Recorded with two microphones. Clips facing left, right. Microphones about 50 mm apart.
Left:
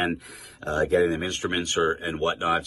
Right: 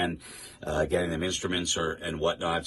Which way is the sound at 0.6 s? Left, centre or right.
Left.